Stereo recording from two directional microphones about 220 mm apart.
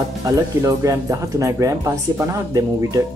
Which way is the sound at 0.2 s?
15° right (ahead or behind).